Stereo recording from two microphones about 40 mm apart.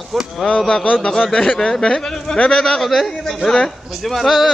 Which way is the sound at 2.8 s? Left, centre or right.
Centre.